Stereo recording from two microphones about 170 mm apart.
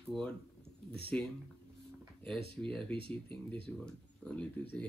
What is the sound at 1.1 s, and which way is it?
Speech, 5° left (ahead or behind).